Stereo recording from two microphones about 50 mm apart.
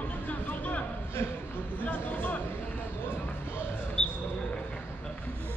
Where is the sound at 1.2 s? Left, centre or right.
Left.